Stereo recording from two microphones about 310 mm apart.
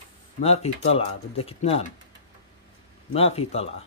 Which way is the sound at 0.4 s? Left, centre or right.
Centre.